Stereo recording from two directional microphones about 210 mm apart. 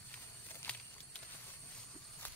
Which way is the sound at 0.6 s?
10° left (ahead or behind).